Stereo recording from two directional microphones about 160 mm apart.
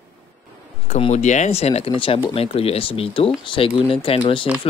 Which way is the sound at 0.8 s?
45° left (ahead or behind).